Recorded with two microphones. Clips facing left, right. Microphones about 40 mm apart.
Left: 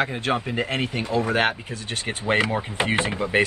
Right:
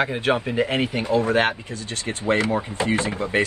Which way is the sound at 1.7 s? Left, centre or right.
Left.